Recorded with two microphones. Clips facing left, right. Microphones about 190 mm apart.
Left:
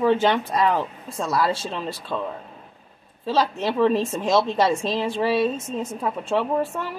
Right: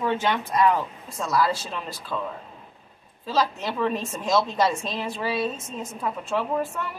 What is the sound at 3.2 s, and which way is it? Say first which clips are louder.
A woman's voice: left 3 dB; 30° left (ahead or behind).